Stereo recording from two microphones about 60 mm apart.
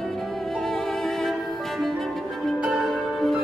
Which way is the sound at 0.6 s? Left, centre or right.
Centre.